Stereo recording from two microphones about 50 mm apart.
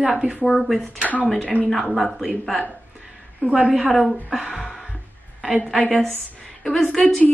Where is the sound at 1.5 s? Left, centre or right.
Left.